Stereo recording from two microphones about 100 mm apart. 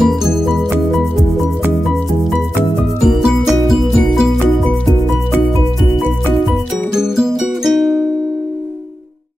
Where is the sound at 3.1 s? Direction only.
Centre (ahead or behind).